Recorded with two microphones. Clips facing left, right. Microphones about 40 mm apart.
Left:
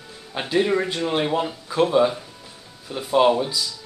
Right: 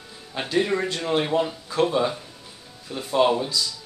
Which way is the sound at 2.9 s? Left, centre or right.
Centre.